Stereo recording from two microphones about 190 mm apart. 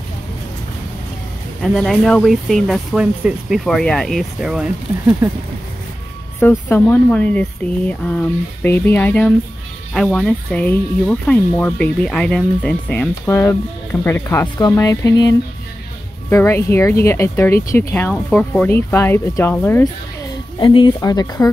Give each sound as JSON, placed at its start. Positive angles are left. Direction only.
{"t": 1.6, "sound": "speech", "side_deg": 0}
{"t": 6.4, "sound": "speech", "side_deg": 10}
{"t": 20.5, "sound": "speech", "side_deg": 25}